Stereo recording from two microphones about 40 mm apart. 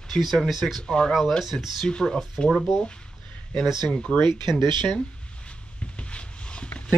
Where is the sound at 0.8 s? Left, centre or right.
Left.